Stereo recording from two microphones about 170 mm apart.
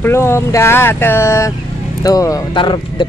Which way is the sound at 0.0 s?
15° left (ahead or behind).